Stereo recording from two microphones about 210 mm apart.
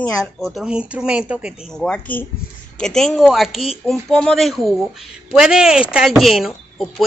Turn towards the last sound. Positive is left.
turn(degrees=0)  # may be behind; listen again after turning